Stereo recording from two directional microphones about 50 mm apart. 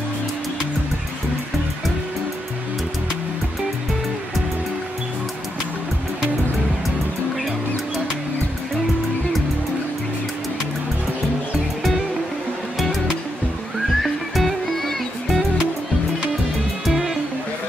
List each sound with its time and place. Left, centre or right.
14.0 s music: centre
16.8 s music: centre